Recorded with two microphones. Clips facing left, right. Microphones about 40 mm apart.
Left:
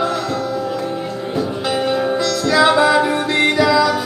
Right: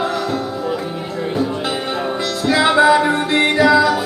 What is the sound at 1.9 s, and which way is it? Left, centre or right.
Music, centre.